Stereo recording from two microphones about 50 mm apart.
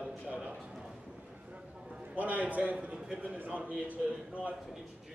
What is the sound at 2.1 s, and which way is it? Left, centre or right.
A man's voice, right.